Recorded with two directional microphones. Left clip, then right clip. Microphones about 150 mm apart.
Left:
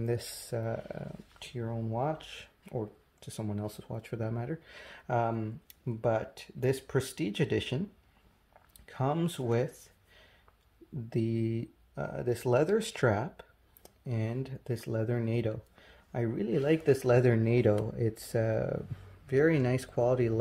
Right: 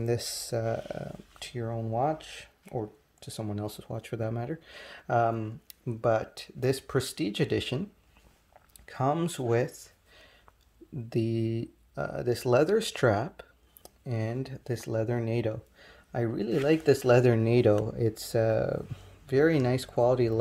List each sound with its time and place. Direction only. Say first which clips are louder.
0.0 s speech: right 4 dB; 25° right (ahead or behind)
8.8 s speech: right 4 dB; 25° right (ahead or behind)
11.1 s speech: right 3 dB; 25° right (ahead or behind)